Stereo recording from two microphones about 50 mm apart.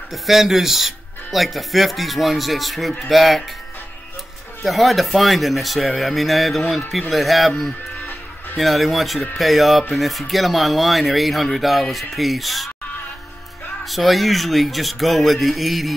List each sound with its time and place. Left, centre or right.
0.1 s speech: centre
4.6 s speech: centre
8.0 s music: left
8.5 s speech: centre
13.8 s speech: centre